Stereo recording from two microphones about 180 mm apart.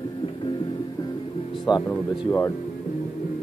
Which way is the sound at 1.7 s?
25° left (ahead or behind).